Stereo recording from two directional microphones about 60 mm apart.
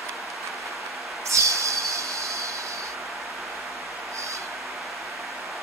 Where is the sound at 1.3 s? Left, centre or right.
Right.